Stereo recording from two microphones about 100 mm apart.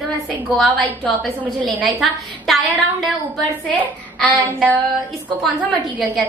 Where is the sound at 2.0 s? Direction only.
Centre (ahead or behind).